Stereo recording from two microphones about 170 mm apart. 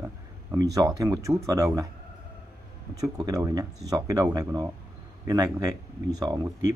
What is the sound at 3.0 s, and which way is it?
Speech, 20° right (ahead or behind).